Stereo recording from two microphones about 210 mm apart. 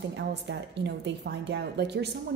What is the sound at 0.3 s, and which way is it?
A woman's voice, 55° right (ahead or behind).